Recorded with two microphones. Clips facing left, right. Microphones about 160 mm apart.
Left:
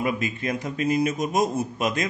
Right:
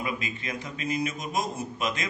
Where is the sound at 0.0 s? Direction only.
45° left (ahead or behind).